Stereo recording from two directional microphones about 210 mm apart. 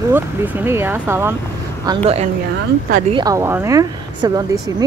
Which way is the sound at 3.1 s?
20° right (ahead or behind).